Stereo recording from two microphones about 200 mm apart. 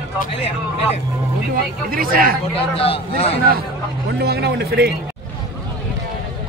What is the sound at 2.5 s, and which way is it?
Speech, 30° left (ahead or behind).